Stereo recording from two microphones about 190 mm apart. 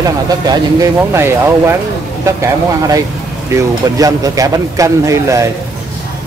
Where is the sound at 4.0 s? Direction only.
20° right (ahead or behind).